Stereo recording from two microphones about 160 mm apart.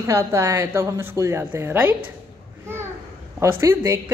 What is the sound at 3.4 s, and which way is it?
Speech, 15° right (ahead or behind).